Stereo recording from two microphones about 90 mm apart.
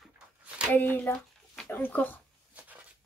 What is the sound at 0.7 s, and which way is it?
Speech, 20° left (ahead or behind).